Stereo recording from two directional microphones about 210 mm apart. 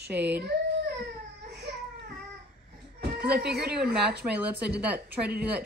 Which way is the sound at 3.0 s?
50° right (ahead or behind).